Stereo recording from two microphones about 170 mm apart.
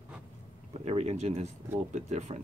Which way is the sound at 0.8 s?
40° right (ahead or behind).